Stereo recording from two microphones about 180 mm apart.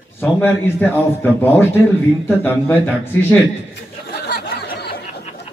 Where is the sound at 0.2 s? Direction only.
10° left (ahead or behind).